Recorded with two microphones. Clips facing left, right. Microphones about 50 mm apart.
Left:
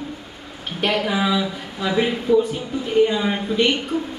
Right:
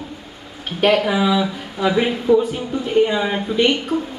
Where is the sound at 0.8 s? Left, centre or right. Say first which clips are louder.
Right 5 dB; centre.